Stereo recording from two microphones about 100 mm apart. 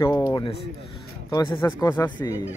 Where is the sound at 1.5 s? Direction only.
20° left (ahead or behind).